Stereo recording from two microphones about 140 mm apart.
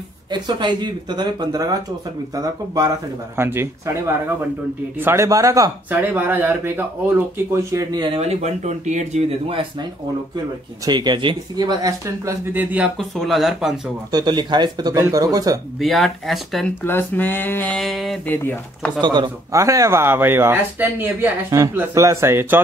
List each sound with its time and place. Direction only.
0.3 s speech: 30° right (ahead or behind)
8.2 s speech: 50° right (ahead or behind)
10.9 s speech: 30° right (ahead or behind)
12.5 s speech: 10° right (ahead or behind)
12.9 s speech: centre (ahead or behind)
14.1 s speech: 30° right (ahead or behind)
15.8 s speech: centre (ahead or behind)
16.8 s speech: 15° left (ahead or behind)
18.2 s speech: 15° left (ahead or behind)
18.9 s speech: 30° right (ahead or behind); by 22.6 s 15° right (ahead or behind)